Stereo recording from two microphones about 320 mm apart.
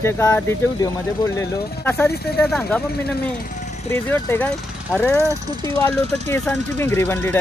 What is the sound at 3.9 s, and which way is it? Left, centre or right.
Speech, centre.